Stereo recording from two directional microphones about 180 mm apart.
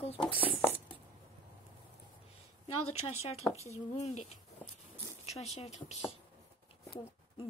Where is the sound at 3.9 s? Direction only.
35° left (ahead or behind).